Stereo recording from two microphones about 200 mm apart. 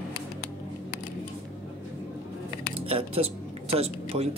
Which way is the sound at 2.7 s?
30° right (ahead or behind).